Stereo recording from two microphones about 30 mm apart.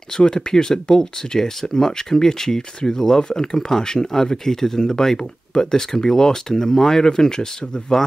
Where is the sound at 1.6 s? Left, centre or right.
Centre.